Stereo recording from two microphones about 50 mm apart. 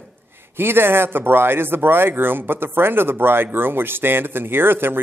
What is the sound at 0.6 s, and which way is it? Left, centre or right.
Speech, right.